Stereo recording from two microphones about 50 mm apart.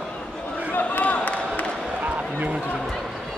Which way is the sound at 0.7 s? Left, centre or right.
Left.